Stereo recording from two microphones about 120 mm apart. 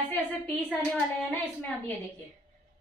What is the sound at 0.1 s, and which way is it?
Speech, 15° left (ahead or behind).